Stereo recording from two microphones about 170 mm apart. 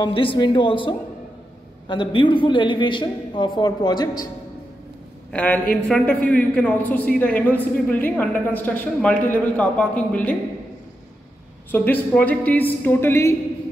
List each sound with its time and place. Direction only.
0.0 s a man's voice: 30° left (ahead or behind)
5.3 s a man's voice: 10° left (ahead or behind)
11.7 s a man's voice: 10° left (ahead or behind)